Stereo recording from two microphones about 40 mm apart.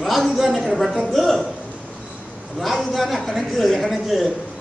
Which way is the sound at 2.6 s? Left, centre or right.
Centre.